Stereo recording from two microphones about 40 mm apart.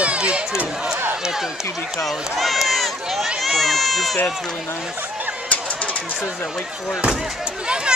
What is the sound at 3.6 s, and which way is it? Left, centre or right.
Baby cry, centre.